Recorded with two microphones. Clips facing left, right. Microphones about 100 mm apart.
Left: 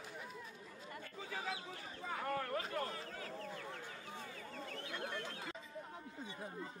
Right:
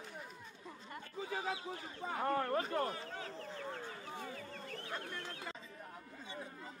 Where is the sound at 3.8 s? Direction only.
50° right (ahead or behind).